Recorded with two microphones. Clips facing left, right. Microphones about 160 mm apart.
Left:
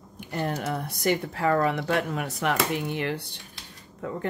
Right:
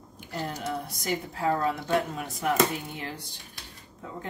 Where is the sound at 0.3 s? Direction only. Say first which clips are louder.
Left 4 dB; 60° left (ahead or behind).